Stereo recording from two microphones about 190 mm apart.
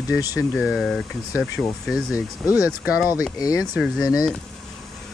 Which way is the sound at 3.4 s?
15° left (ahead or behind).